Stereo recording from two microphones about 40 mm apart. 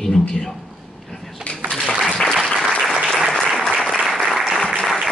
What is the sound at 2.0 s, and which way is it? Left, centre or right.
Applause, centre.